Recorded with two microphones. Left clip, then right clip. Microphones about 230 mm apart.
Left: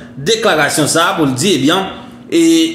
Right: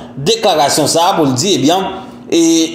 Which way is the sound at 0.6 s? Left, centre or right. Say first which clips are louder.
Right 2 dB; centre.